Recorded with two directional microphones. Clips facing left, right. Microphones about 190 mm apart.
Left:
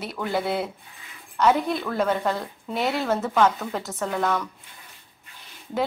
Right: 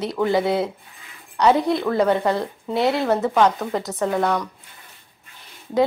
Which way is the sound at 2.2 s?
65° right (ahead or behind).